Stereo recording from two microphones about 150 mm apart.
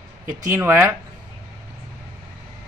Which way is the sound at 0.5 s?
15° right (ahead or behind).